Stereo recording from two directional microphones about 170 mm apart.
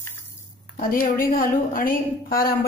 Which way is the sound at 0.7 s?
55° left (ahead or behind).